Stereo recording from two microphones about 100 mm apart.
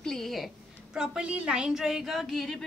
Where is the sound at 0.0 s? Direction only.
5° left (ahead or behind).